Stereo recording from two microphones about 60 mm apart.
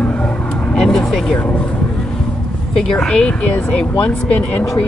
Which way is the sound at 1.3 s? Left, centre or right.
Centre.